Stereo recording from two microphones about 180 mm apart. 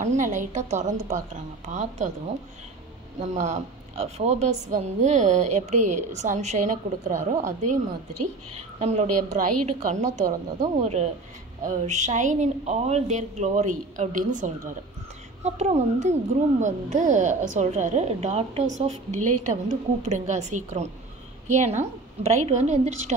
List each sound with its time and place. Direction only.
0.0 s a woman's voice: 45° right (ahead or behind)
3.2 s a woman's voice: 40° right (ahead or behind)